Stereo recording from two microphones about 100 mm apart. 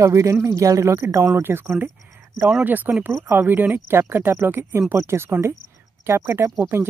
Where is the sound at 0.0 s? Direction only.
30° right (ahead or behind).